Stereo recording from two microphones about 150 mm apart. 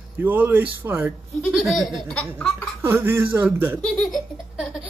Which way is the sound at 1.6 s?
Centre (ahead or behind).